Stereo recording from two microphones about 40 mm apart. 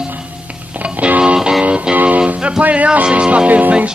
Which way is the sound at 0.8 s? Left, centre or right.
Right.